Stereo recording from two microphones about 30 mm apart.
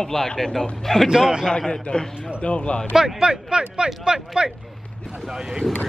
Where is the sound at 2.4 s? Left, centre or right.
Left.